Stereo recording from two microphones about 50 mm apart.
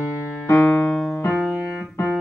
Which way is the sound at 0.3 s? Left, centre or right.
Left.